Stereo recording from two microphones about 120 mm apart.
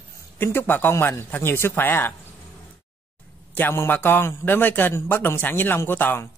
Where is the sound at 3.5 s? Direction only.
15° left (ahead or behind).